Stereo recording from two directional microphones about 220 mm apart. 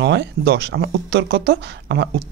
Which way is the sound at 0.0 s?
50° right (ahead or behind).